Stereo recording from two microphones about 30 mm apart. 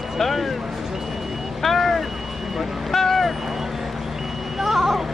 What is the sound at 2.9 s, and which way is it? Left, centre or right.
Vehicle, centre.